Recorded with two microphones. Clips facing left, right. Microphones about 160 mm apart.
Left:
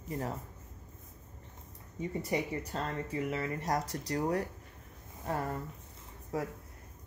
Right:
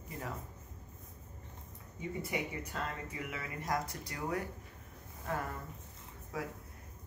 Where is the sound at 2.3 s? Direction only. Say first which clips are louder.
Left 7 dB; 35° left (ahead or behind).